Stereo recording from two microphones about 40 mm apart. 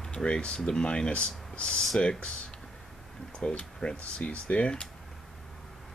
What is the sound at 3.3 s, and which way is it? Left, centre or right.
Speech, left.